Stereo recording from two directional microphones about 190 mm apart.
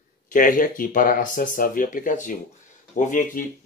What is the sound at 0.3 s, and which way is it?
Speech, 45° left (ahead or behind).